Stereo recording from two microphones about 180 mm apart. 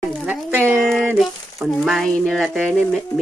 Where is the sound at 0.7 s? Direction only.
Centre (ahead or behind).